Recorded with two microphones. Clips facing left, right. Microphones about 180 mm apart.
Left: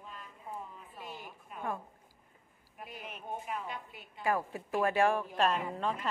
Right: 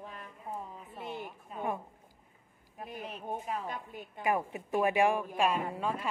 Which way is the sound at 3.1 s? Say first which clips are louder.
Right 2 dB; 35° right (ahead or behind).